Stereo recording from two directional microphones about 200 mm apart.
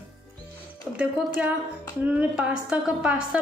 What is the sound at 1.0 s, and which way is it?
A woman's voice, 5° right (ahead or behind).